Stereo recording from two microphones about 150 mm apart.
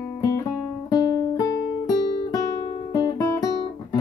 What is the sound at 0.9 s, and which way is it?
Music, 25° left (ahead or behind).